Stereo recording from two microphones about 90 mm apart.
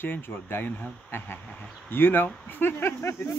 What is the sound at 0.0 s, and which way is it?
Speech, 20° left (ahead or behind).